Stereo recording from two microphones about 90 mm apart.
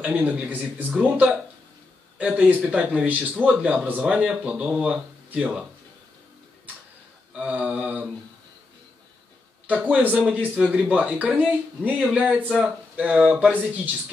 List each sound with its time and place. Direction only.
0.0 s a man's voice: 15° right (ahead or behind)
7.3 s a man's voice: 15° right (ahead or behind)
9.7 s a man's voice: 15° right (ahead or behind)